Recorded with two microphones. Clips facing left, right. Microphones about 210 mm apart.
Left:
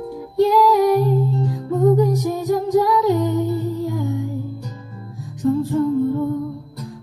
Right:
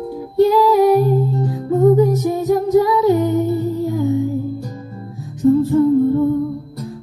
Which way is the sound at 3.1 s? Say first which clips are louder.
Right 3 dB; 20° right (ahead or behind).